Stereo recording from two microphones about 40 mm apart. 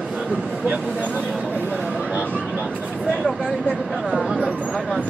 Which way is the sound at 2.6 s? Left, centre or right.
Right.